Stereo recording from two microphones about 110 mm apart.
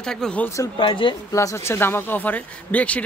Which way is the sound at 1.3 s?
25° left (ahead or behind).